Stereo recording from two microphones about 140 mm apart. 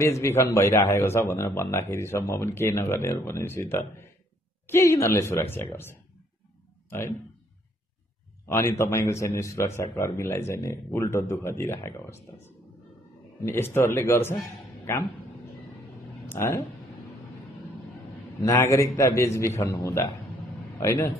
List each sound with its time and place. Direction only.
0.0 s a woman's voice: 20° left (ahead or behind)
8.5 s a woman's voice: 20° left (ahead or behind)
16.3 s speech: 20° left (ahead or behind)
18.4 s a man's voice: 20° left (ahead or behind)